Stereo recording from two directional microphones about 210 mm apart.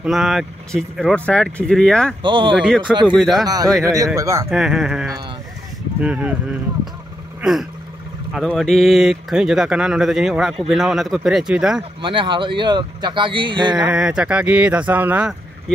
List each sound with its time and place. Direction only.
0.0 s speech: centre (ahead or behind)
2.2 s speech: 25° right (ahead or behind)
3.2 s speech: centre (ahead or behind)
3.4 s speech: 15° right (ahead or behind)
4.5 s speech: centre (ahead or behind)
12.0 s speech: 25° right (ahead or behind)
13.8 s speech: 5° right (ahead or behind)